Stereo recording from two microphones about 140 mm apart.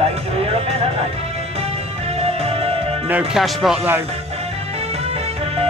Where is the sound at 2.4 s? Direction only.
45° right (ahead or behind).